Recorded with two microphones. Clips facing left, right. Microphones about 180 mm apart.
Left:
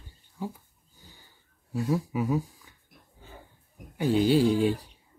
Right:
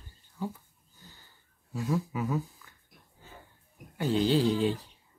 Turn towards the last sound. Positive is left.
turn(degrees=15)  # may be behind; listen again after turning